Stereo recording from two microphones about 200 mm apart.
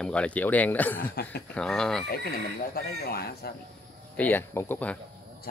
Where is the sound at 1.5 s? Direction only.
5° left (ahead or behind).